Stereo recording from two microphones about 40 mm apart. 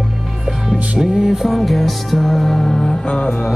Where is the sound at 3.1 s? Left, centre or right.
Left.